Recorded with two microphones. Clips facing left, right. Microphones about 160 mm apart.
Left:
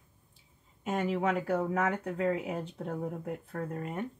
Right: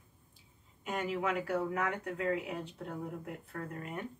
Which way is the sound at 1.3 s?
45° left (ahead or behind).